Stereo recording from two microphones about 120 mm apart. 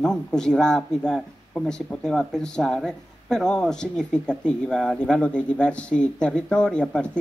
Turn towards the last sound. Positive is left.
turn(degrees=10)  # may be behind; listen again after turning